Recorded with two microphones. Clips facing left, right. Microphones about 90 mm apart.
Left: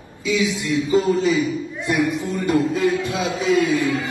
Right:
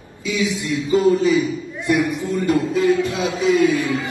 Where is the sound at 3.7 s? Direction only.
20° left (ahead or behind).